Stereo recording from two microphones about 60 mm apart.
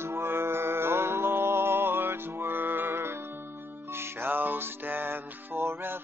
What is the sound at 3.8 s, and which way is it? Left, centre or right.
Music, right.